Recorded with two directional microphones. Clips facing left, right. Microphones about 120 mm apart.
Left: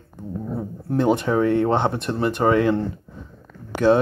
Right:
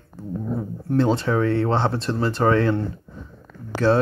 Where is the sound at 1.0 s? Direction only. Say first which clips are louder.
Left 1 dB; 20° left (ahead or behind).